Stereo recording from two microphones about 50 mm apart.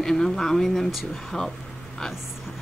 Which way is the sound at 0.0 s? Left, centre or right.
Centre.